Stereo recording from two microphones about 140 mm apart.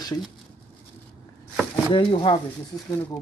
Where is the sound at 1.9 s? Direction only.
40° left (ahead or behind).